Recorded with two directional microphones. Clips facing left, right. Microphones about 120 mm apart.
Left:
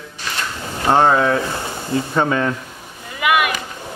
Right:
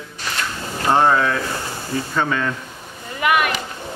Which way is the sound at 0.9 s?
15° left (ahead or behind).